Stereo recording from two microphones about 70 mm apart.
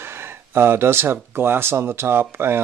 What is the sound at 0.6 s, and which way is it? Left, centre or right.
Speech, right.